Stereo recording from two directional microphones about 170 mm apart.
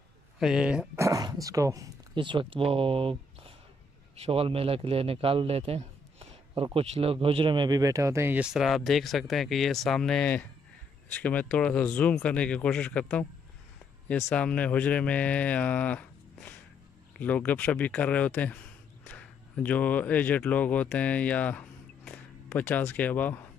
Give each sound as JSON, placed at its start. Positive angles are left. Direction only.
{"t": 0.4, "sound": "speech", "side_deg": -5}
{"t": 0.9, "sound": "a man's voice", "side_deg": -20}
{"t": 14.3, "sound": "speech", "side_deg": 5}